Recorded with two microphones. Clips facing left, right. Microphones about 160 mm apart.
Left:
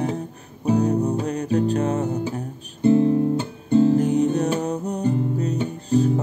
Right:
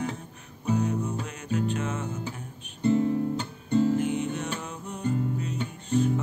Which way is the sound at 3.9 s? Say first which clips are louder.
Left 8 dB; 40° left (ahead or behind).